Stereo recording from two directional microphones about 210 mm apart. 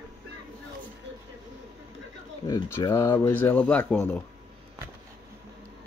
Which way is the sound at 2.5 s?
15° left (ahead or behind).